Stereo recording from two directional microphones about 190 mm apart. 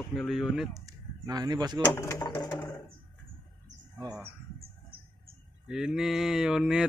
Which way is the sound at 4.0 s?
20° right (ahead or behind).